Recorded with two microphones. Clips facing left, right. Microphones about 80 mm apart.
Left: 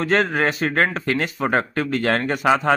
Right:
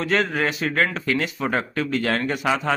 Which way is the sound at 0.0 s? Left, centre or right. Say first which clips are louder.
Left 3 dB; left.